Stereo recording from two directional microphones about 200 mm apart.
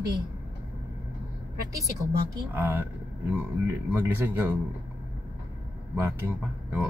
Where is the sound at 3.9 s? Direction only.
10° right (ahead or behind).